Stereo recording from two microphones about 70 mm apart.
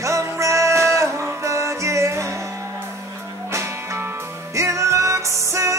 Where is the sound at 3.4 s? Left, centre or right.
Right.